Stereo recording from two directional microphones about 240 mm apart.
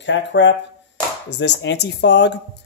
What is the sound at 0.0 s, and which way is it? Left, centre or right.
Speech, left.